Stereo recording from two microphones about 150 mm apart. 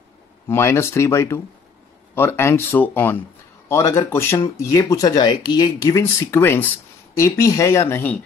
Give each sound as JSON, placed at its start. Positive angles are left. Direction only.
{"t": 0.5, "sound": "speech", "side_deg": 15}